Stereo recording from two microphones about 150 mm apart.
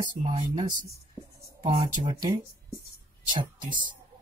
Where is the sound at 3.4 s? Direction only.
30° right (ahead or behind).